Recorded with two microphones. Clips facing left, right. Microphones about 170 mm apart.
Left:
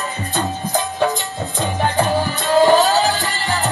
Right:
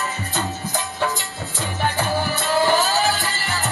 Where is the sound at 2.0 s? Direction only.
20° left (ahead or behind).